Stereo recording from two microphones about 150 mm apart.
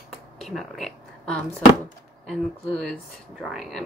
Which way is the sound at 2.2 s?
5° left (ahead or behind).